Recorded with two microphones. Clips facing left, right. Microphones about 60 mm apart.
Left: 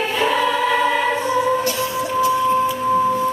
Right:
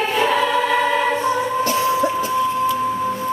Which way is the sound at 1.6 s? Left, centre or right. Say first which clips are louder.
Right 4 dB; right.